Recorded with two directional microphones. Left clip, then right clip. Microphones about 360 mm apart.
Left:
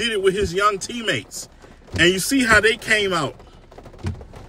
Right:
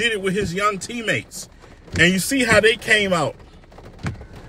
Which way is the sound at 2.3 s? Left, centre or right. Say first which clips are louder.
Even; left.